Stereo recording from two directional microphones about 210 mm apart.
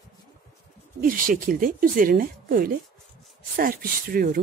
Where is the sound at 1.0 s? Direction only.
40° right (ahead or behind).